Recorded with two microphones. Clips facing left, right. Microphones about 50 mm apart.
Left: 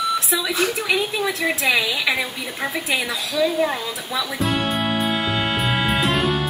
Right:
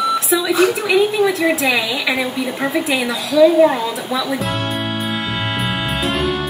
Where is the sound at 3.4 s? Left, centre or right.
Right.